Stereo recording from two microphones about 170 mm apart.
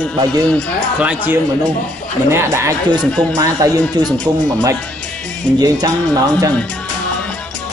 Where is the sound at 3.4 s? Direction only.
20° right (ahead or behind).